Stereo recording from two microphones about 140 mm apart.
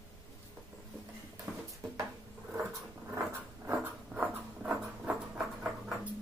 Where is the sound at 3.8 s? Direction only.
10° right (ahead or behind).